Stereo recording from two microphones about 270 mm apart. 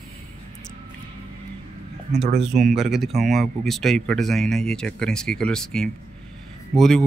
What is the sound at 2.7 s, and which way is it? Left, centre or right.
Speech, centre.